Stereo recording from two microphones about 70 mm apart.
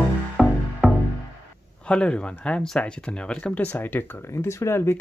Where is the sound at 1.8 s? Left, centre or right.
Centre.